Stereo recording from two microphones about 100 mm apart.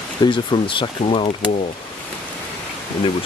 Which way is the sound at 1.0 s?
75° left (ahead or behind).